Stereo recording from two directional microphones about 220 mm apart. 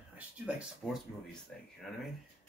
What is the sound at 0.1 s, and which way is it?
Speech, 5° right (ahead or behind).